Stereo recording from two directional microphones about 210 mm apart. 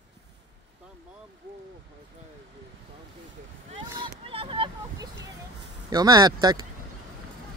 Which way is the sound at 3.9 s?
20° right (ahead or behind).